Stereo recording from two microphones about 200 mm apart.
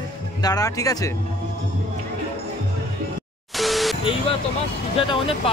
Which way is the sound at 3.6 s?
Centre (ahead or behind).